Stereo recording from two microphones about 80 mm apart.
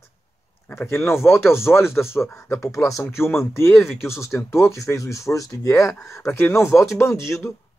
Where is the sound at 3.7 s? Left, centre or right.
Centre.